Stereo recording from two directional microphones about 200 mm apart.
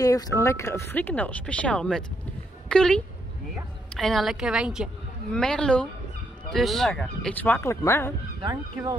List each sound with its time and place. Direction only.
0.0 s a woman's voice: 15° left (ahead or behind)
8.4 s speech: 20° right (ahead or behind)